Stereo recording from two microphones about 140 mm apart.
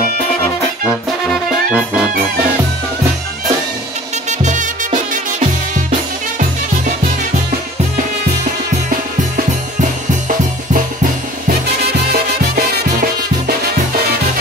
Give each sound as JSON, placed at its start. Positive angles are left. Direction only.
{"t": 1.3, "sound": "music", "side_deg": -5}
{"t": 4.3, "sound": "music", "side_deg": -60}
{"t": 12.1, "sound": "music", "side_deg": -90}